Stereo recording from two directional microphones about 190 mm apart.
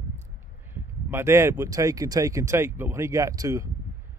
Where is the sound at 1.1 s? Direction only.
15° right (ahead or behind).